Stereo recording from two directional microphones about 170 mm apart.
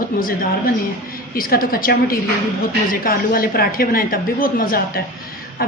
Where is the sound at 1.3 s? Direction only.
60° left (ahead or behind).